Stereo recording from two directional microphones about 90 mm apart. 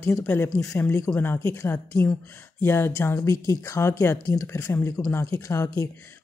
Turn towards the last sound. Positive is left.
turn(degrees=30)  # may be behind; listen again after turning